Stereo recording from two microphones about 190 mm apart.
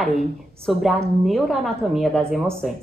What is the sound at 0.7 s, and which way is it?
A woman's voice, centre (ahead or behind).